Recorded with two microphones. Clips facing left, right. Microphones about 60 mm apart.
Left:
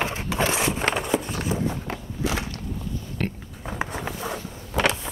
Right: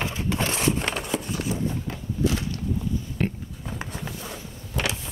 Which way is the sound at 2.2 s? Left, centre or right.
Left.